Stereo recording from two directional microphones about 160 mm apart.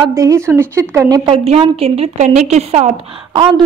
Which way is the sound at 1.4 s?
40° right (ahead or behind).